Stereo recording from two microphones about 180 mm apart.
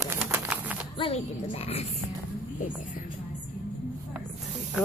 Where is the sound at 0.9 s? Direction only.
30° left (ahead or behind).